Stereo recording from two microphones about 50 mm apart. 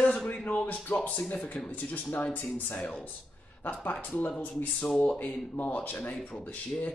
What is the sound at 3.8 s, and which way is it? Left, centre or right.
Speech, left.